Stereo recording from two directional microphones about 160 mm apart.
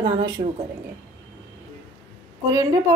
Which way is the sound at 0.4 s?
35° right (ahead or behind).